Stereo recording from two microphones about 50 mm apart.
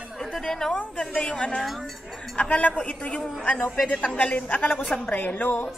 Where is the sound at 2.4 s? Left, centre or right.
Left.